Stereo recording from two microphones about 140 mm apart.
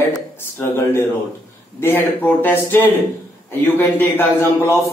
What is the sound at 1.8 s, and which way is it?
A man's voice, 15° left (ahead or behind).